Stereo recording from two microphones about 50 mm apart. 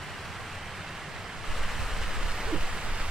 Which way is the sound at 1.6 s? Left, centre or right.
Centre.